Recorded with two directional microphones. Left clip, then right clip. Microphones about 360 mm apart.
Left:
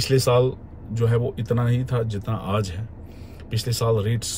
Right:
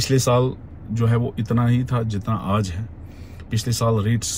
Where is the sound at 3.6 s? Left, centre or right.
Centre.